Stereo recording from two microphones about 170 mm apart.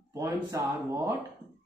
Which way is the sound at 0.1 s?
20° right (ahead or behind).